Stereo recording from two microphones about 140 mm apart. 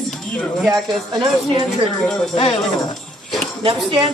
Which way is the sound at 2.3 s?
45° left (ahead or behind).